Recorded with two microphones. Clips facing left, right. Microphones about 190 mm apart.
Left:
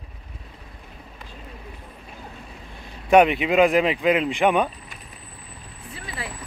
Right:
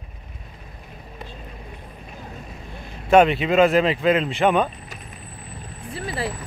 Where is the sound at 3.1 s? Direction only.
15° left (ahead or behind).